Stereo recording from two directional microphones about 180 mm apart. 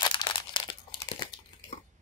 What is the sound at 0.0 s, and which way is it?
Crumpling, 25° left (ahead or behind).